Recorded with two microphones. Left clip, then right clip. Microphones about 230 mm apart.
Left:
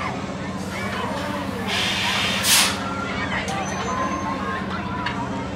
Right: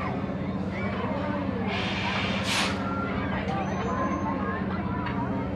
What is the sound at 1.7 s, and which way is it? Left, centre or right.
Vehicle, centre.